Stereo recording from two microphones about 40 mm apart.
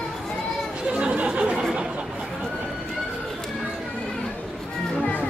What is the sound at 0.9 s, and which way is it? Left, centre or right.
Chatter, right.